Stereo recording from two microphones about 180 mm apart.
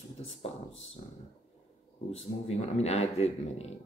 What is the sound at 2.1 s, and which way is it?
Speech, 35° left (ahead or behind).